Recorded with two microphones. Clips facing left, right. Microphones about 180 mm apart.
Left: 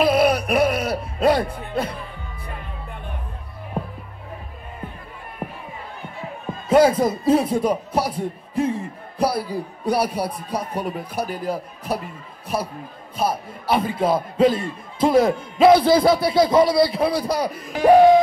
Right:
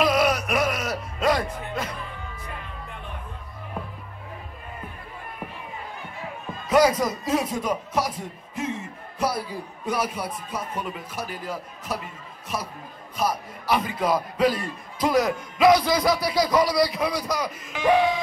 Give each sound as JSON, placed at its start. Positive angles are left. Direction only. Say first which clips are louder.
{"t": 0.0, "sound": "music", "louder": "left 4 dB", "side_deg": 30}
{"t": 6.7, "sound": "a man's voice", "louder": "left 4 dB", "side_deg": 30}
{"t": 13.2, "sound": "speech", "louder": "left 3 dB", "side_deg": 30}